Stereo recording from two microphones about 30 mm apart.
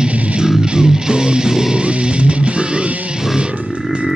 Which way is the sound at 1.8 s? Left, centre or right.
Right.